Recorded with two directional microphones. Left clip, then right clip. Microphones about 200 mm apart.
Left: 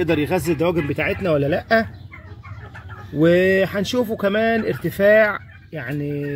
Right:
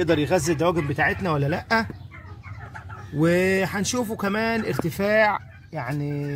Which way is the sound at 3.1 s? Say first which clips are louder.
Left 5 dB; centre (ahead or behind).